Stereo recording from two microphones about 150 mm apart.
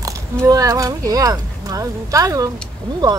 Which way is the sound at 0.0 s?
25° right (ahead or behind).